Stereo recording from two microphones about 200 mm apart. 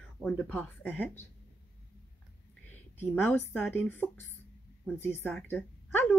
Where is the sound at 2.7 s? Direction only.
10° left (ahead or behind).